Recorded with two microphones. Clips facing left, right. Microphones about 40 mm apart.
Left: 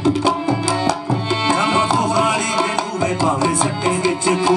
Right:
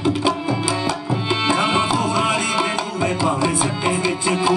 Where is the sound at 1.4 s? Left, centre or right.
Centre.